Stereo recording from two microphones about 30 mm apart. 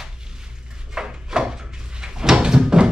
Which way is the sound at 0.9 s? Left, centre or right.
Right.